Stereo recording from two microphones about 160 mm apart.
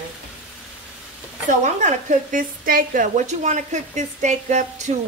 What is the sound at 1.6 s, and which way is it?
A woman's voice, 50° right (ahead or behind).